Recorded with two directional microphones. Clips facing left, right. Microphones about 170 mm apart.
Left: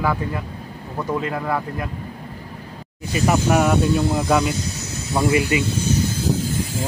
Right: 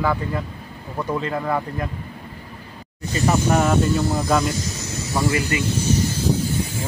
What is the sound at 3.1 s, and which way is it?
Speech, 10° left (ahead or behind).